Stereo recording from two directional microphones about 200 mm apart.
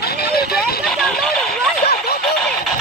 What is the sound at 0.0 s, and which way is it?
Vehicle, 50° left (ahead or behind).